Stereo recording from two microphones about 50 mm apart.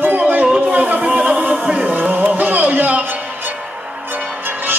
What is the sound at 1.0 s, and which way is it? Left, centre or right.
Music, centre.